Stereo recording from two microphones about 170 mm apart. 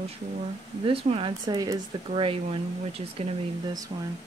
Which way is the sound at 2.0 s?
35° right (ahead or behind).